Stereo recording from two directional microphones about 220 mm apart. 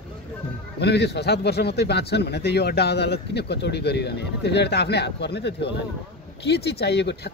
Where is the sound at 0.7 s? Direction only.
50° left (ahead or behind).